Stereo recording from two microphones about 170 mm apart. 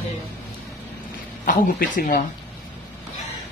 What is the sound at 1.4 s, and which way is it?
Speech, 55° left (ahead or behind).